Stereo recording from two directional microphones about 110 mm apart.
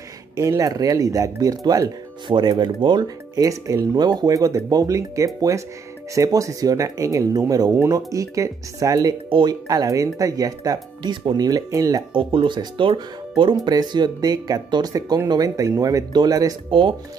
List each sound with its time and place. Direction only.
0.4 s speech: 30° right (ahead or behind)
12.1 s speech: 50° right (ahead or behind); by 16.5 s 35° right (ahead or behind)